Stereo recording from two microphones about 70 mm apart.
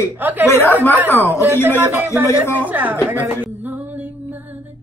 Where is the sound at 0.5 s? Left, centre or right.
Left.